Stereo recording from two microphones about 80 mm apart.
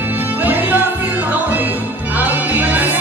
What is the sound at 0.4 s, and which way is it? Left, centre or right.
Music, right.